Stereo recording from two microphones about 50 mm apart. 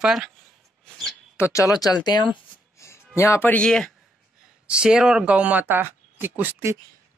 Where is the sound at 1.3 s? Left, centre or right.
Left.